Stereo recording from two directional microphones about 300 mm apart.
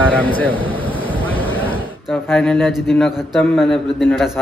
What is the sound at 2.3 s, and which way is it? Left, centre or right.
Speech, centre.